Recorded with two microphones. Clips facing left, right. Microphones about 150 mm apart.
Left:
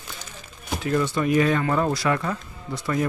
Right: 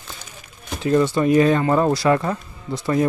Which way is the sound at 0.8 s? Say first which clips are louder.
Right 6 dB; 30° right (ahead or behind).